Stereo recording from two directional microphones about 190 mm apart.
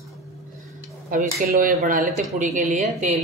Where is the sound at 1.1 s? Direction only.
45° right (ahead or behind).